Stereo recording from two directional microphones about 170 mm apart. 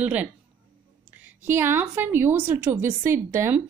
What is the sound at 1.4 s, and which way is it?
Speech, 15° right (ahead or behind).